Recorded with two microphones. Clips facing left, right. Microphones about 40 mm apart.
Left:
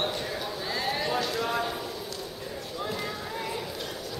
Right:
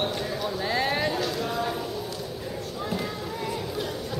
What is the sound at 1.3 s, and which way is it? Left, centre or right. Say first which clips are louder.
Clip-clop: left 1 dB; left.